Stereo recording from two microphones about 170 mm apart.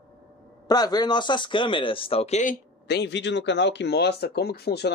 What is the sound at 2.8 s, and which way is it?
Speech, 85° left.